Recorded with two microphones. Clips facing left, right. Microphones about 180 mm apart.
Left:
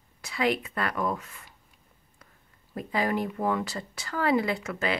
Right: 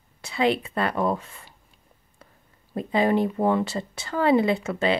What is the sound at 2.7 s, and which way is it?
A woman's voice, 25° right (ahead or behind).